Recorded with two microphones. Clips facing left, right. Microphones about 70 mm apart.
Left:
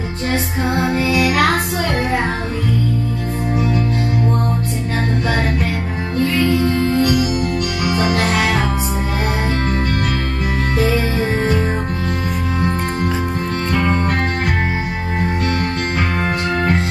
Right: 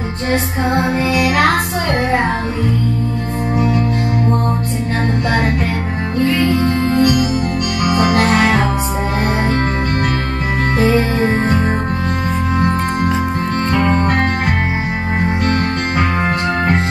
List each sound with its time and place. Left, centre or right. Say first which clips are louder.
1.1 s music: right 1 dB; centre
6.6 s music: right 1 dB; right
8.1 s music: right 4 dB; right
11.0 s music: right 3 dB; right